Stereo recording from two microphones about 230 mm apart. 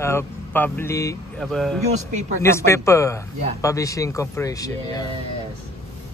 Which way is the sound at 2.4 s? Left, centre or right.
Centre.